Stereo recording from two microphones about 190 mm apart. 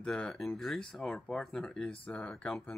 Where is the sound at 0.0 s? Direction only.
5° left (ahead or behind).